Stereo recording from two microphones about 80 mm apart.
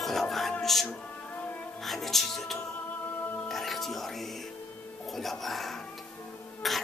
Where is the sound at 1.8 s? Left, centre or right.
Centre.